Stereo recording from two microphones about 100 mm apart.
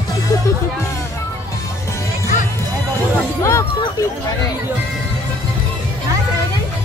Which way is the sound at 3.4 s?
30° left (ahead or behind).